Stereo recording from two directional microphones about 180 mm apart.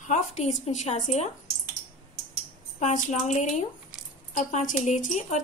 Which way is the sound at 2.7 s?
40° left (ahead or behind).